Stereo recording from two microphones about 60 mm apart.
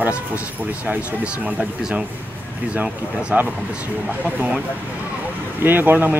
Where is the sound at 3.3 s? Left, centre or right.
Right.